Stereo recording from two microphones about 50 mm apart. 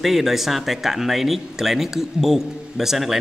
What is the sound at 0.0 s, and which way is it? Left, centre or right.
Speech, centre.